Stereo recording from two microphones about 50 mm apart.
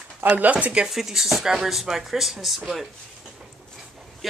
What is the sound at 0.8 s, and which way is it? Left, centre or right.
Speech, centre.